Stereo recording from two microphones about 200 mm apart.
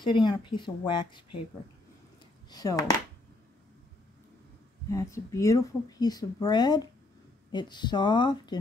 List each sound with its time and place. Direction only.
0.0 s speech: 25° left (ahead or behind)
2.5 s speech: 20° left (ahead or behind)
4.9 s speech: 15° left (ahead or behind)